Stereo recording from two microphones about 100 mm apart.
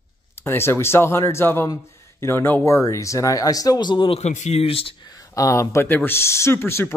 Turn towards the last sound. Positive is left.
turn(degrees=25)  # may be behind; listen again after turning